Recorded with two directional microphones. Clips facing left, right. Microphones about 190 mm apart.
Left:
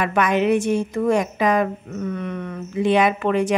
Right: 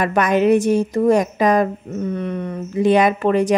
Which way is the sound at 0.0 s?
40° right (ahead or behind).